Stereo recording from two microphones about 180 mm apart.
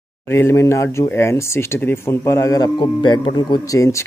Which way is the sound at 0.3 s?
15° left (ahead or behind).